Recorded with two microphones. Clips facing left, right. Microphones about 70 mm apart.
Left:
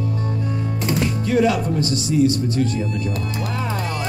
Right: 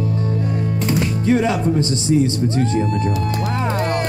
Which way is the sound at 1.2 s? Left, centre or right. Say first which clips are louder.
Right 1 dB; right.